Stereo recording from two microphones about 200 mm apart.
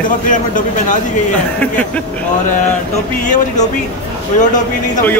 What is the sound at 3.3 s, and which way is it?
A man's voice, 40° left (ahead or behind).